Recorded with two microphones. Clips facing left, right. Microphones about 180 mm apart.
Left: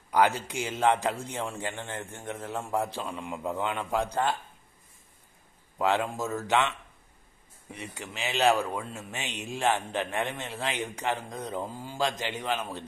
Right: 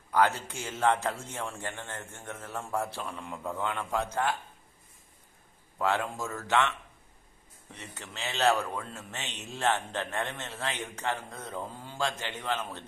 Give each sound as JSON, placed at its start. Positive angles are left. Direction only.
{"t": 0.1, "sound": "a man's voice", "side_deg": 15}
{"t": 5.8, "sound": "a man's voice", "side_deg": 15}
{"t": 7.7, "sound": "a man's voice", "side_deg": 10}